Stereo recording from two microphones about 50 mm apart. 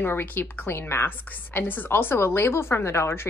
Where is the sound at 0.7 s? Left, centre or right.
Left.